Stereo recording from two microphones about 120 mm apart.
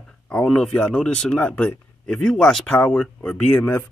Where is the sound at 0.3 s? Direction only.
5° left (ahead or behind).